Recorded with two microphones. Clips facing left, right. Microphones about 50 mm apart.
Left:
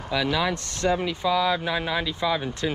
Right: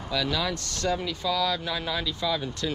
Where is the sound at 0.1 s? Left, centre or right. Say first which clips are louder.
Left 4 dB; left.